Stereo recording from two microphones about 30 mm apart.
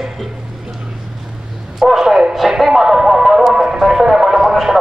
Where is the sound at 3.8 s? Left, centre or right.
Centre.